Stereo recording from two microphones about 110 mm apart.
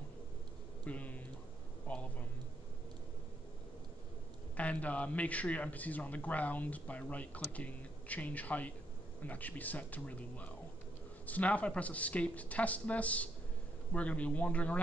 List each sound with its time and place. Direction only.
0.8 s a man's voice: 15° left (ahead or behind)
4.6 s a man's voice: 15° left (ahead or behind)